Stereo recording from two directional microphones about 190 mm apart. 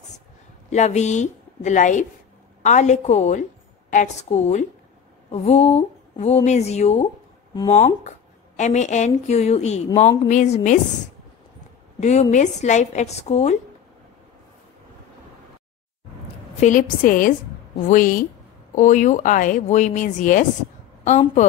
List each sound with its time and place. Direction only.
0.7 s a woman's voice: 35° left (ahead or behind)
12.0 s speech: 35° left (ahead or behind)
16.5 s speech: 40° left (ahead or behind)